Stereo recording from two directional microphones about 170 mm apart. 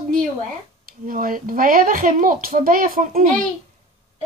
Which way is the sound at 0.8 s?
55° right (ahead or behind).